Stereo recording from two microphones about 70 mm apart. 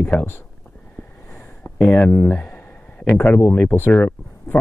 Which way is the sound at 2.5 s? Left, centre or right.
Left.